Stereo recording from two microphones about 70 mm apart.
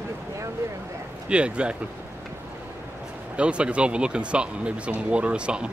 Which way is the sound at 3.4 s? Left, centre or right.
Centre.